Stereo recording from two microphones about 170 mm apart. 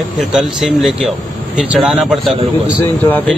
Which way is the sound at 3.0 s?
10° left (ahead or behind).